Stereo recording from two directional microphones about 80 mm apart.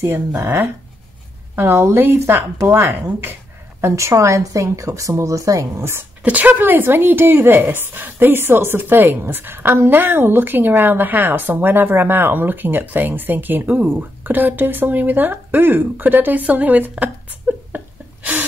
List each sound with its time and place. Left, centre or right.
0.0 s a woman's voice: right
6.2 s a woman's voice: right